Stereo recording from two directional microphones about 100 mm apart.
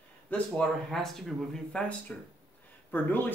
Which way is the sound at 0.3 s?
5° left (ahead or behind).